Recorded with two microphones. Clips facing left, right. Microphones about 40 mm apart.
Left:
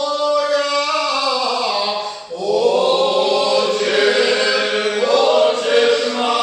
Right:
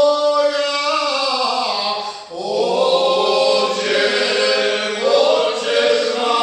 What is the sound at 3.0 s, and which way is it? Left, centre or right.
Choir, centre.